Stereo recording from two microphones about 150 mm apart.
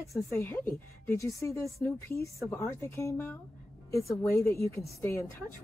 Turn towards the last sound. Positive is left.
turn(degrees=15)  # may be behind; listen again after turning